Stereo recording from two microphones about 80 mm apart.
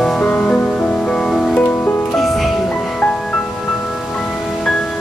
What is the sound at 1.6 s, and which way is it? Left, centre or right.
Music, left.